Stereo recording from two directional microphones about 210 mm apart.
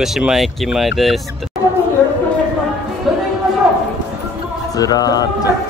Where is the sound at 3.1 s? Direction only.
5° right (ahead or behind).